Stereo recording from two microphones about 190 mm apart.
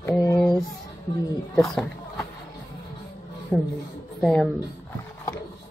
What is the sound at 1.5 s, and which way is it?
Speech, 5° left (ahead or behind).